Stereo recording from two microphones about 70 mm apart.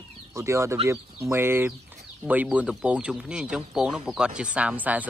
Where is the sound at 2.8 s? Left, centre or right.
Centre.